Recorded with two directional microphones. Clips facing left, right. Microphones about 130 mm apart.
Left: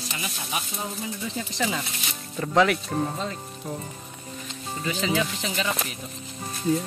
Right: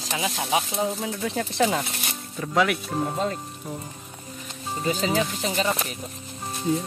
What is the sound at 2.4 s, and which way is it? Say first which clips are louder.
Speech: left 2 dB; 5° right (ahead or behind).